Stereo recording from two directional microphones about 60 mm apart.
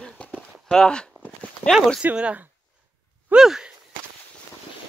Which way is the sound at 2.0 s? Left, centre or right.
Right.